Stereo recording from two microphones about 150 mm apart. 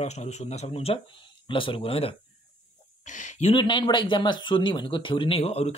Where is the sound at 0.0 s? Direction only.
50° left (ahead or behind).